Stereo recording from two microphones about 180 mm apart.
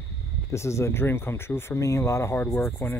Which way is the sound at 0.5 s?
15° left (ahead or behind).